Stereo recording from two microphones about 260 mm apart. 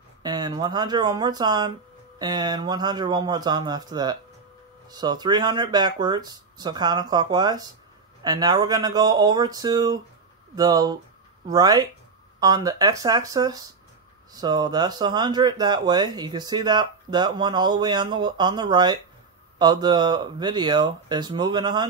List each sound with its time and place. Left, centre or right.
0.2 s speech: centre